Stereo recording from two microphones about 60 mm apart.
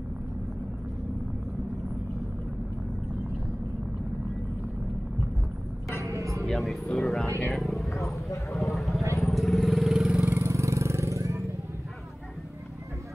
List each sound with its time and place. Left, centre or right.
6.0 s music: right
6.4 s speech: centre
8.7 s vehicle: centre
10.0 s vehicle: right
10.4 s vehicle: right